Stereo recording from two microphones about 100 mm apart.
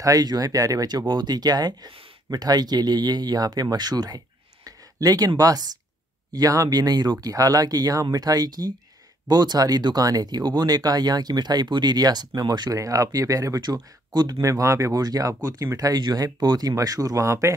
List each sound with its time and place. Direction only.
0.0 s speech: 40° right (ahead or behind)
4.6 s a sound: 40° right (ahead or behind)
5.4 s speech: 40° right (ahead or behind)